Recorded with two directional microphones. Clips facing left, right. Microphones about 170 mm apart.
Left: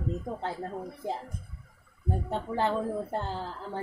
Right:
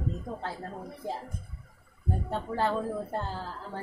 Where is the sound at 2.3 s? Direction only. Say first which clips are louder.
Even; 20° left (ahead or behind).